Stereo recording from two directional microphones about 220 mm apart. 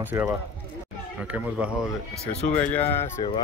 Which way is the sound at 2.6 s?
10° left (ahead or behind).